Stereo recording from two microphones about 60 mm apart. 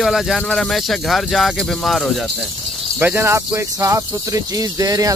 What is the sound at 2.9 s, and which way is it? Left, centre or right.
Speech, right.